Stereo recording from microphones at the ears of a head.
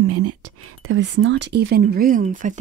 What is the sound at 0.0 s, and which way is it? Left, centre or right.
Speech, right.